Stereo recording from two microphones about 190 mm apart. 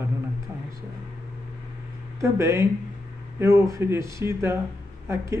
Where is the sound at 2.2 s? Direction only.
15° right (ahead or behind).